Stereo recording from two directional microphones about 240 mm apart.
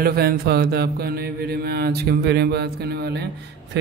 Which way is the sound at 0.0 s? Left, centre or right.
Right.